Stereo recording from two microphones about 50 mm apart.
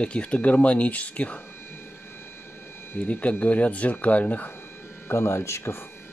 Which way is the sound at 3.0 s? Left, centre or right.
Left.